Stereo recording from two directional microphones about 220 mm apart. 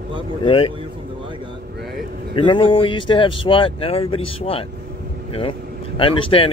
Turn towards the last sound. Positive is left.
turn(degrees=25)  # may be behind; listen again after turning